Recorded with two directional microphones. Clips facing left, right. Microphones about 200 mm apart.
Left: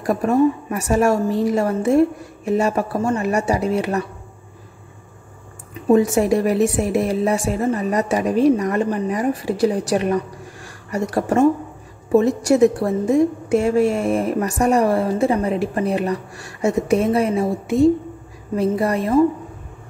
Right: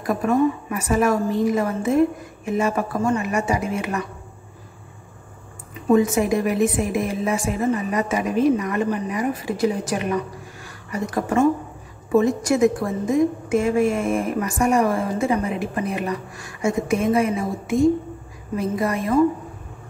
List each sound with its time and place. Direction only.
0.0 s a woman's voice: 35° left (ahead or behind)
5.9 s a woman's voice: 35° left (ahead or behind)
12.4 s a woman's voice: 35° left (ahead or behind)